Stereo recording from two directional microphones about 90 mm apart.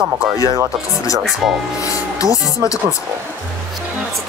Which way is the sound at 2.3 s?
40° left (ahead or behind).